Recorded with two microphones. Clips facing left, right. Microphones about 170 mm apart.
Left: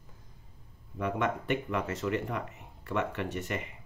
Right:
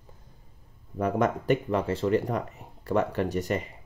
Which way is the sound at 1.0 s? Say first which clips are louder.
Right 5 dB; 40° right (ahead or behind).